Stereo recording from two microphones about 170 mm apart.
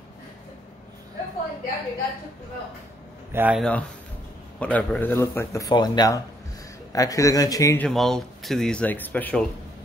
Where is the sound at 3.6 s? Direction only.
5° left (ahead or behind).